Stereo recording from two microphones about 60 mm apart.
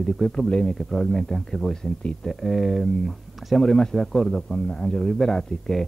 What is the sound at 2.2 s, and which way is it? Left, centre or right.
Speech, centre.